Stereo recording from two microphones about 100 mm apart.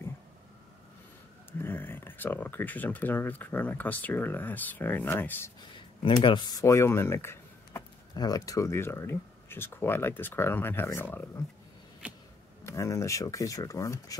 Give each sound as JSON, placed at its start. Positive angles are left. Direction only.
{"t": 1.6, "sound": "speech", "side_deg": 20}
{"t": 5.6, "sound": "speech", "side_deg": 50}
{"t": 6.6, "sound": "speech", "side_deg": 30}
{"t": 8.2, "sound": "speech", "side_deg": 35}
{"t": 12.6, "sound": "speech", "side_deg": 30}